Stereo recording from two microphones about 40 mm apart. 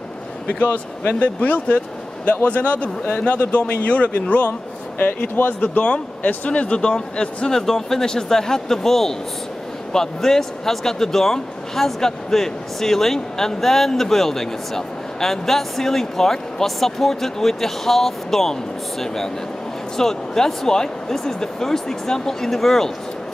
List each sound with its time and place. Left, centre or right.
1.0 s speech: left
7.5 s speech: centre